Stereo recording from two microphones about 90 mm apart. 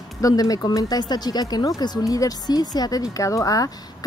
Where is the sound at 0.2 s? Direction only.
45° left (ahead or behind).